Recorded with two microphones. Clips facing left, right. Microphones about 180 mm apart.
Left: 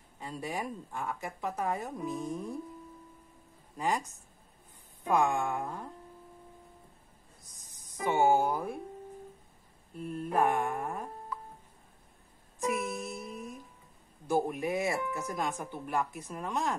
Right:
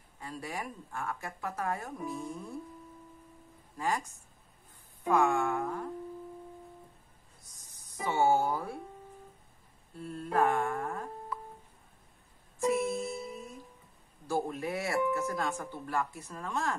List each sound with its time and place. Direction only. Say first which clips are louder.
0.2 s speech: left 3 dB; 20° left (ahead or behind)
3.7 s speech: left 1 dB; 20° left (ahead or behind)
5.0 s speech: right 1 dB; 15° left (ahead or behind)
7.9 s speech: left 1 dB; 15° left (ahead or behind)
9.9 s mantra: even; 20° left (ahead or behind)
12.5 s music: right 3 dB; 15° left (ahead or behind)
13.2 s music: even; 20° right (ahead or behind)
14.2 s speech: left 3 dB; 15° left (ahead or behind)